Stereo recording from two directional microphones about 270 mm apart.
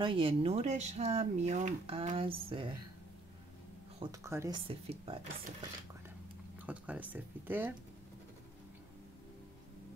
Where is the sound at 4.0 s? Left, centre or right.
Centre.